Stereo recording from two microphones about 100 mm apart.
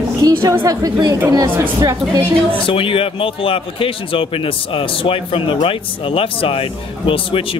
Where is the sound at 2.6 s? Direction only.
65° left (ahead or behind).